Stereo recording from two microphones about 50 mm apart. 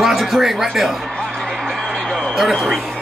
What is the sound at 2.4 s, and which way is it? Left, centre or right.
Speech, centre.